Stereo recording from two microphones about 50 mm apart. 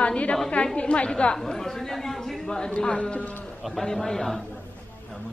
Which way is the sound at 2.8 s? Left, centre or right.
Left.